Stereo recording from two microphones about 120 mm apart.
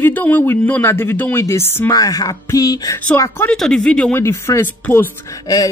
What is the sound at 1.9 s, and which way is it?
Speech, 30° left (ahead or behind).